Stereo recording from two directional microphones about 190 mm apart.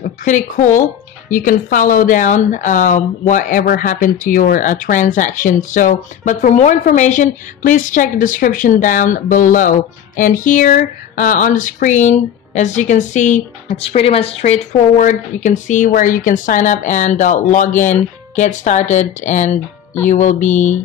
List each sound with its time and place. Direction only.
0.0 s speech: 40° left (ahead or behind)